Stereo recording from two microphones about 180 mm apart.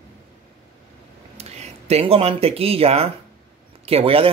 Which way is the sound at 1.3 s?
35° right (ahead or behind).